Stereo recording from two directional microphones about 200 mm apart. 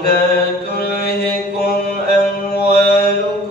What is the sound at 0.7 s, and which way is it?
Mantra, 50° left (ahead or behind).